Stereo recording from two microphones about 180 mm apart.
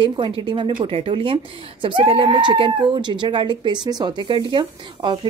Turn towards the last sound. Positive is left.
turn(degrees=-25)  # may be behind; listen again after turning